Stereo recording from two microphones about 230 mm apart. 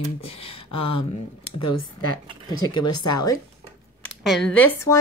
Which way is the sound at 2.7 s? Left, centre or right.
Centre.